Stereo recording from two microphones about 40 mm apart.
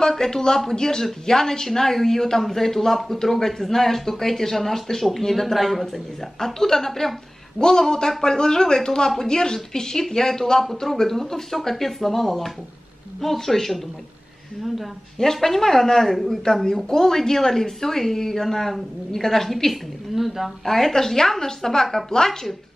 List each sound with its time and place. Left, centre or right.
0.0 s a woman's voice: centre
15.1 s a woman's voice: centre
20.6 s a woman's voice: centre